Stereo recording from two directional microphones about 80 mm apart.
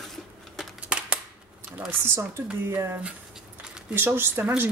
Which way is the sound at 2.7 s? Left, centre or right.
Right.